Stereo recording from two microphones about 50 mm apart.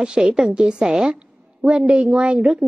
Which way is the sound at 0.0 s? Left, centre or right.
Centre.